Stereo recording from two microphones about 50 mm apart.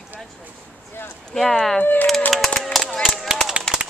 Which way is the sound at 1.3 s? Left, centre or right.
Centre.